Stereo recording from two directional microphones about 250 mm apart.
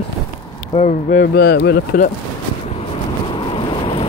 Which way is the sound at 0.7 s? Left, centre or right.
Left.